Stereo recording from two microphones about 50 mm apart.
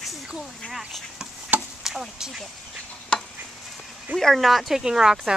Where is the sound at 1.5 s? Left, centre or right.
Right.